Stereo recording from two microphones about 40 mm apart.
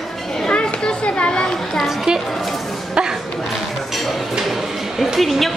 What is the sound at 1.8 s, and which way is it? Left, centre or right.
Speech, centre.